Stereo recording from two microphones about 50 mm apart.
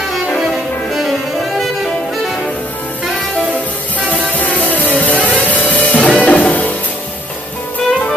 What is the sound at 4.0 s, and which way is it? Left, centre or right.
Music, left.